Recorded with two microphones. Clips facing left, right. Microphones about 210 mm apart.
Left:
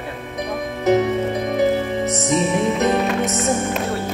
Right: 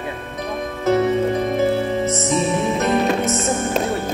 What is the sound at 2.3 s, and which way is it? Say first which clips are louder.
Music: left 3 dB; 15° left (ahead or behind).